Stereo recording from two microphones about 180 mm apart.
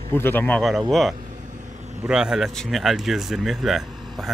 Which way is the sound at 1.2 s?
45° right (ahead or behind).